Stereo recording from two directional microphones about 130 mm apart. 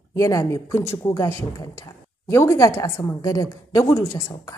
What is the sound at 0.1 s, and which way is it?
A woman's voice, 25° left (ahead or behind).